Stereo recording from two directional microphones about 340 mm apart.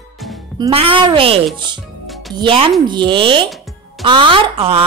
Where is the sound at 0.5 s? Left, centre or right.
Centre.